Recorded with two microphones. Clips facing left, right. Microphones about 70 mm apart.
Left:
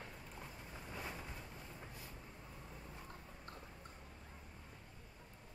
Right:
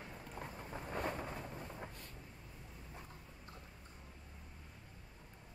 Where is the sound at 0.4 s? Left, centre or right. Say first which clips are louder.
Right 8 dB; right.